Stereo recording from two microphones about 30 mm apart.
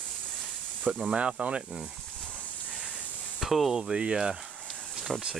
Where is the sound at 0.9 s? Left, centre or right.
Right.